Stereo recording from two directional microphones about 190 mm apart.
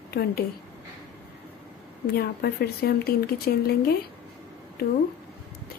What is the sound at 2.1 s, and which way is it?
Speech, 55° left (ahead or behind).